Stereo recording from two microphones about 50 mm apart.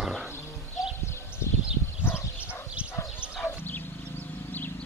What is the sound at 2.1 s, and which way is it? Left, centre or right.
Dog, left.